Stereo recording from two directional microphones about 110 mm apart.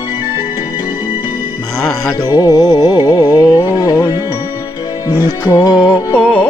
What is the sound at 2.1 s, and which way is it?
Music, 35° left (ahead or behind).